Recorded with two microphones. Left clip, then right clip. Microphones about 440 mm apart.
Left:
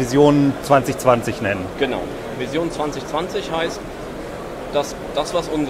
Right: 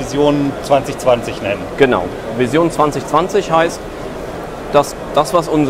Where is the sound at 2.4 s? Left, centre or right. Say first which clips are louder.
Right 10 dB; right.